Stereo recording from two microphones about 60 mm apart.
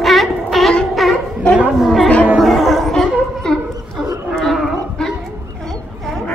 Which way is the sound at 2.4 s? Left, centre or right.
Centre.